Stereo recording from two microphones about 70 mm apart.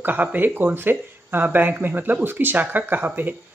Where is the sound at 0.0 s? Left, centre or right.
Right.